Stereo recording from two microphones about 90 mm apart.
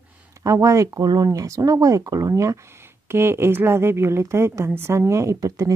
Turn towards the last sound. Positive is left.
turn(degrees=-35)  # may be behind; listen again after turning